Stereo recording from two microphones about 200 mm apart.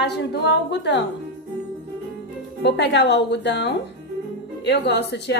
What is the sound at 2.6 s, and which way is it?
A woman's voice, 60° left (ahead or behind).